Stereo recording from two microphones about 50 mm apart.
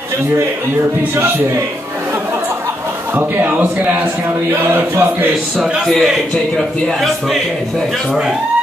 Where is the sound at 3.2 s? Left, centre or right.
Right.